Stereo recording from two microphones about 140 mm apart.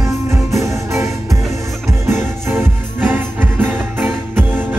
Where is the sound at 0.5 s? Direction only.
20° right (ahead or behind).